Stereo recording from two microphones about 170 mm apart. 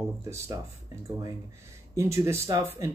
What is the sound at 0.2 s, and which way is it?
Speech, 15° right (ahead or behind).